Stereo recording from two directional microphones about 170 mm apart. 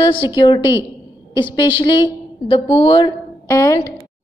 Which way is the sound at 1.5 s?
30° left (ahead or behind).